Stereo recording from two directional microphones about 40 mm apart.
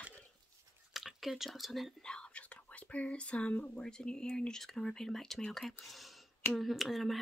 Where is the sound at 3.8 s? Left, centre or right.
Centre.